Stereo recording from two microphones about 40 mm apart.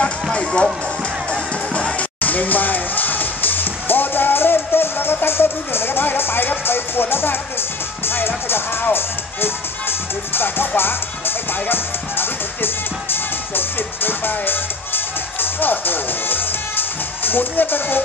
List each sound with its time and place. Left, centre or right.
0.0 s music: left
1.7 s music: left
8.1 s speech: left
11.7 s music: left